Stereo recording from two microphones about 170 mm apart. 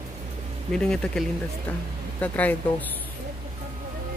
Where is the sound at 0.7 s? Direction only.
5° left (ahead or behind).